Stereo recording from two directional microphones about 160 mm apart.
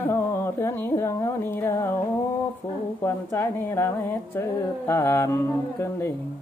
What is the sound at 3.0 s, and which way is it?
Mantra, 15° left (ahead or behind).